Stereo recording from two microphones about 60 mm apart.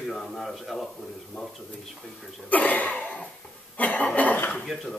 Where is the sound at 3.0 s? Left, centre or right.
Left.